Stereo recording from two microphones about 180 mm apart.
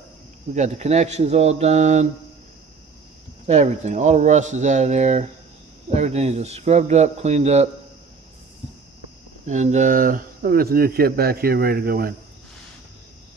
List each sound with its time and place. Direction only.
0.5 s speech: 40° right (ahead or behind)
3.4 s speech: 40° right (ahead or behind)
9.5 s speech: 40° right (ahead or behind); by 12.1 s 60° right (ahead or behind)